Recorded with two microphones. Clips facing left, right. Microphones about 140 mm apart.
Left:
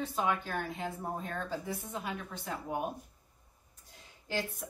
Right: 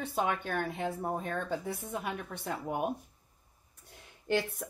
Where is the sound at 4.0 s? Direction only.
60° right (ahead or behind).